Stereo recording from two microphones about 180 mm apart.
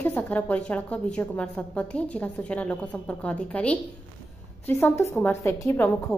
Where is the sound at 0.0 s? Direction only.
10° left (ahead or behind).